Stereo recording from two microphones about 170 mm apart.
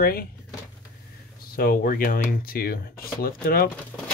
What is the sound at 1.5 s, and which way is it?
Speech, 60° left (ahead or behind).